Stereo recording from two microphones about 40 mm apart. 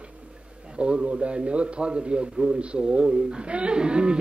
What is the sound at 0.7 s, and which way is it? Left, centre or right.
A man's voice, right.